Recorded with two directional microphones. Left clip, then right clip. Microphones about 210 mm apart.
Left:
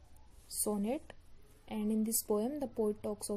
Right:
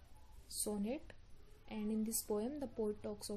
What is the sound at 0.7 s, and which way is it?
Speech, 25° left (ahead or behind).